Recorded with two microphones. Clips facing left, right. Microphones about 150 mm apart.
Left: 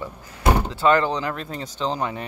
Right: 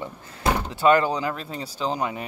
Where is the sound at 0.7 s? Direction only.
15° right (ahead or behind).